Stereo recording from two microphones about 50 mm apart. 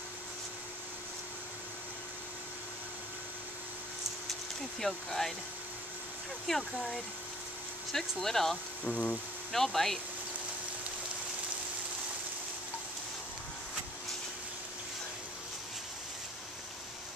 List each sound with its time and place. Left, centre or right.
4.3 s speech: centre
6.4 s speech: centre
8.2 s speech: centre
8.8 s a sound: left
9.5 s speech: centre